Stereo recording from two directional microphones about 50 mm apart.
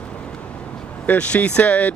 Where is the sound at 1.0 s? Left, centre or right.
Left.